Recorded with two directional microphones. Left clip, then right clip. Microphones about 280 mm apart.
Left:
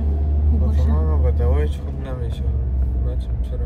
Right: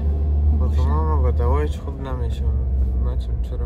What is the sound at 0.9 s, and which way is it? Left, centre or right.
Vehicle, centre.